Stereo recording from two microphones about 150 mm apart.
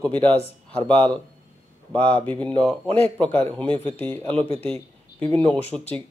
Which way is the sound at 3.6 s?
35° right (ahead or behind).